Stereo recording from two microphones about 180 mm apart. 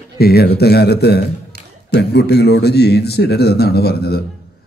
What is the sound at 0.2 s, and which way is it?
A man's voice, 60° left (ahead or behind).